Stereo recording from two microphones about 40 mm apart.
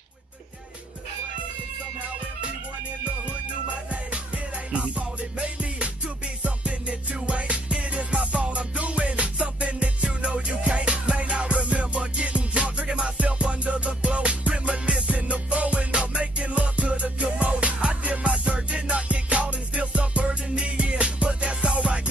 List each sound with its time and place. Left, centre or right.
3.9 s music: right